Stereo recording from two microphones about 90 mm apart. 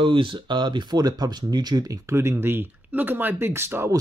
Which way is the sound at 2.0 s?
30° right (ahead or behind).